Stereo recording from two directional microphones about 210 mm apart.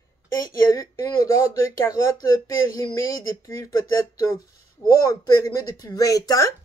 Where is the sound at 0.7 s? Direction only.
15° left (ahead or behind).